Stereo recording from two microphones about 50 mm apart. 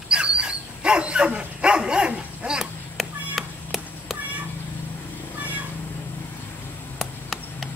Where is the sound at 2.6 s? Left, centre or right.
Centre.